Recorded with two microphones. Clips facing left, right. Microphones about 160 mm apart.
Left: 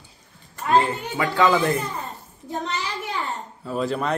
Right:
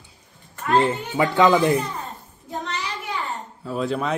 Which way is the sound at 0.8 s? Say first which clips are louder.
Right 4 dB; 20° right (ahead or behind).